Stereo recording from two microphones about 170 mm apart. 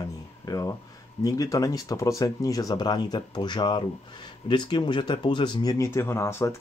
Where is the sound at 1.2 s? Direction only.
20° left (ahead or behind).